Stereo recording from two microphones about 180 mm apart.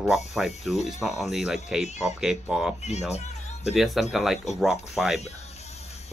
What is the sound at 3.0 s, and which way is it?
Music, 35° left (ahead or behind).